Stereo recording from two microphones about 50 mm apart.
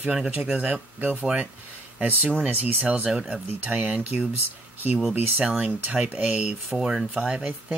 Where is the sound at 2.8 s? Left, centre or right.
Right.